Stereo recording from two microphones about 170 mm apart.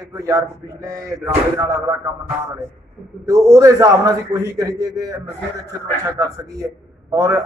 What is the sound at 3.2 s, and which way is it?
A man's voice, 20° right (ahead or behind).